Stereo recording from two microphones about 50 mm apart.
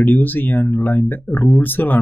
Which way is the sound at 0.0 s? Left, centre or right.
Left.